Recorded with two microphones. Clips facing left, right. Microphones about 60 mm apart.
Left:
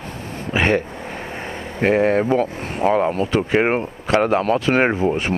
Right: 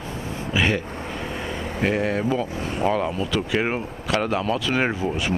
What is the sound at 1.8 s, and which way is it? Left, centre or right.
Speech, left.